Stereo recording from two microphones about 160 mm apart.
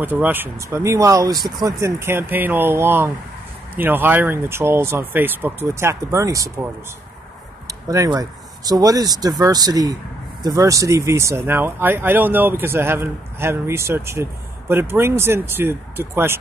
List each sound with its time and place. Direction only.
0.0 s speech: 10° right (ahead or behind)
7.9 s speech: 20° right (ahead or behind)